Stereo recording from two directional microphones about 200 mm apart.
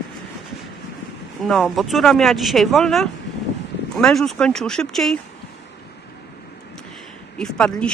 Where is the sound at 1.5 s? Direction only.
Centre (ahead or behind).